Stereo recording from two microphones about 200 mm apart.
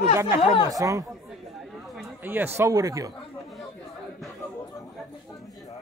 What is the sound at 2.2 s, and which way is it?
Speech, 10° right (ahead or behind).